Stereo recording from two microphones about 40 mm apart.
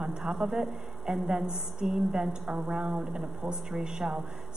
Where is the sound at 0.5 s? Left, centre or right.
Right.